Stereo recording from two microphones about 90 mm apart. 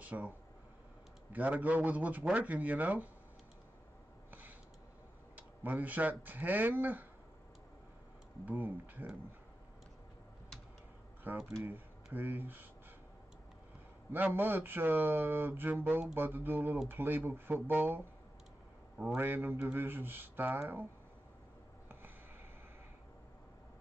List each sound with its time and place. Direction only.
0.0 s speech: 15° right (ahead or behind)
1.3 s a man's voice: 20° right (ahead or behind)
4.3 s a sound: 20° right (ahead or behind)
5.3 s speech: 20° right (ahead or behind)
8.5 s speech: 20° right (ahead or behind)
11.3 s speech: 25° right (ahead or behind)
14.1 s speech: 20° right (ahead or behind)
19.0 s speech: 20° right (ahead or behind)